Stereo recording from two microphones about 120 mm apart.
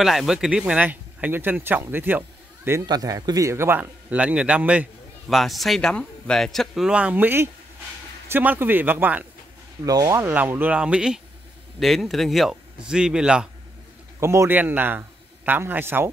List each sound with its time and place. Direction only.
0.0 s speech: centre (ahead or behind); by 2.8 s 15° right (ahead or behind)
2.9 s a man's voice: 30° right (ahead or behind); by 4.8 s 10° right (ahead or behind)
5.3 s speech: centre (ahead or behind)
9.8 s a man's voice: 30° right (ahead or behind); by 13.5 s 5° right (ahead or behind)
14.2 s a man's voice: 25° right (ahead or behind)